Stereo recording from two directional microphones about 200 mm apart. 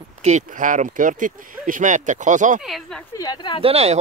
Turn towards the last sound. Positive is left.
turn(degrees=-30)  # may be behind; listen again after turning